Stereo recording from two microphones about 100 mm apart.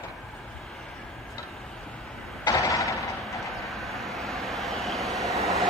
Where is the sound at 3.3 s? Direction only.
Centre (ahead or behind).